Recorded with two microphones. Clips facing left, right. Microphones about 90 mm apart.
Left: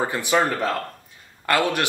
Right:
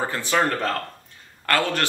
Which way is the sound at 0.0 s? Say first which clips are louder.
Left 1 dB; 15° left (ahead or behind).